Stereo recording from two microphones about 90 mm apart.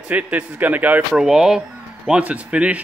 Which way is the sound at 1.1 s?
5° right (ahead or behind).